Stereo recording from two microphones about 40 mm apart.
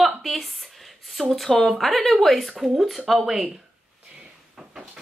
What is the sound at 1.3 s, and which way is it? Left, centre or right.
Speech, centre.